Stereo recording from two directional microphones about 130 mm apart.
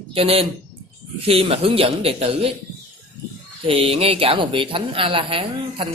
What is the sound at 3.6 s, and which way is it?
Speech, 45° right (ahead or behind).